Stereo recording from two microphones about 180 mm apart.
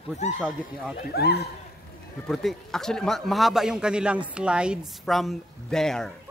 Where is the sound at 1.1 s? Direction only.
65° left (ahead or behind).